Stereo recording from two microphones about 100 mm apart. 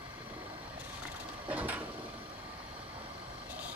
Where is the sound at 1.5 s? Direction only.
15° right (ahead or behind).